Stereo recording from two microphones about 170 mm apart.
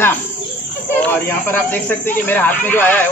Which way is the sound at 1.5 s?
10° left (ahead or behind).